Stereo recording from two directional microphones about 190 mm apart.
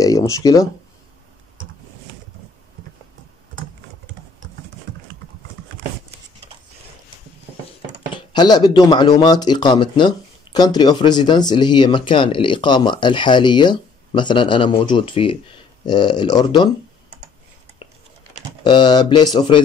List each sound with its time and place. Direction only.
0.0 s speech: 20° left (ahead or behind)
8.1 s speech: 25° left (ahead or behind)
18.6 s speech: 25° left (ahead or behind)